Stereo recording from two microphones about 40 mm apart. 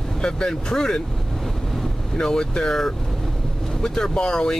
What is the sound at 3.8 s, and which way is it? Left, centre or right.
Speech, centre.